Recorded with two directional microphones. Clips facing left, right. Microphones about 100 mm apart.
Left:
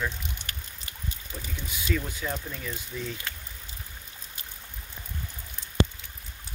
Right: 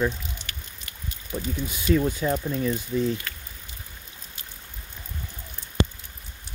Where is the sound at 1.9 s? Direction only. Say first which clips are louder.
Right 9 dB; 40° right (ahead or behind).